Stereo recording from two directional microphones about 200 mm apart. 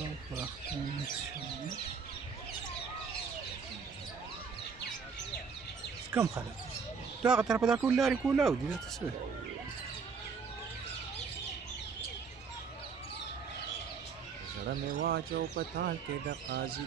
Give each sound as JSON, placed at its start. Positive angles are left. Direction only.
{"t": 6.1, "sound": "speech", "side_deg": -15}
{"t": 7.2, "sound": "speech", "side_deg": -5}
{"t": 14.7, "sound": "speech", "side_deg": -50}